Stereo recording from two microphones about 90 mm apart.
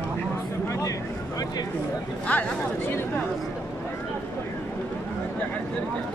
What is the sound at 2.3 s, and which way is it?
Speech, 15° left (ahead or behind).